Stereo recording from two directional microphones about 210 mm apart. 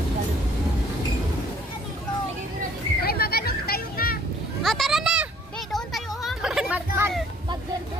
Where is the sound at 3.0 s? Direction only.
45° left (ahead or behind).